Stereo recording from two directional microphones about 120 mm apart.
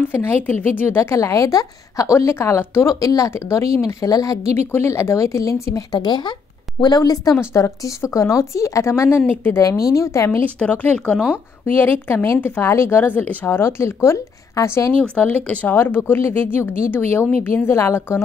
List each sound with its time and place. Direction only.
0.1 s a woman's voice: 15° left (ahead or behind)
10.4 s a woman's voice: 15° left (ahead or behind)
15.0 s a woman's voice: 10° left (ahead or behind)